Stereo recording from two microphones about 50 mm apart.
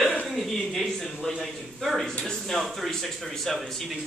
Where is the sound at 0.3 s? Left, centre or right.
Centre.